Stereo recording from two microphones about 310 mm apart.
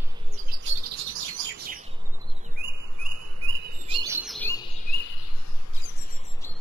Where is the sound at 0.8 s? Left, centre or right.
Right.